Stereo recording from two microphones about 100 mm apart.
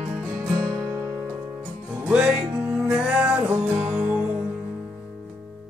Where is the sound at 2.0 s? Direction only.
10° right (ahead or behind).